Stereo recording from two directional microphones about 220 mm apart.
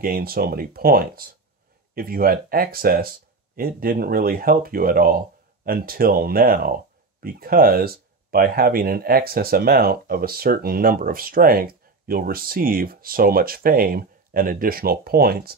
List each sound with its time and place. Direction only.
0.0 s speech: 40° right (ahead or behind)